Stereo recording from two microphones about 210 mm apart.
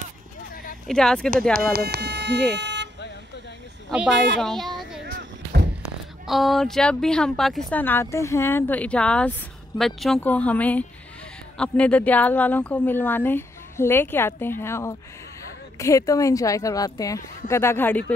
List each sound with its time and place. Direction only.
0.8 s speech: 5° left (ahead or behind)
1.5 s speech: 50° right (ahead or behind)
2.5 s vehicle: 55° right (ahead or behind)
3.9 s speech: centre (ahead or behind)
5.0 s music: 50° right (ahead or behind)
5.8 s speech: centre (ahead or behind)